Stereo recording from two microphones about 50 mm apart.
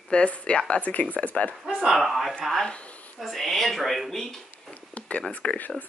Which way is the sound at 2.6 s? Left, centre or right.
Left.